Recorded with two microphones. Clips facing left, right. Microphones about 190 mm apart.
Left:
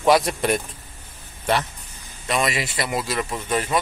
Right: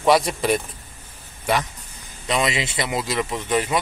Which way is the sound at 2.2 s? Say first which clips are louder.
Right 1 dB; 20° right (ahead or behind).